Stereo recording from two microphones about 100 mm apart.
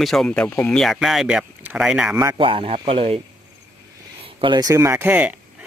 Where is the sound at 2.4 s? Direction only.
70° right (ahead or behind).